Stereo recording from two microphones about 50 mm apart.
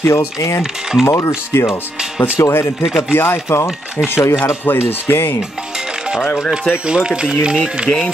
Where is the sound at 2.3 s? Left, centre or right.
Left.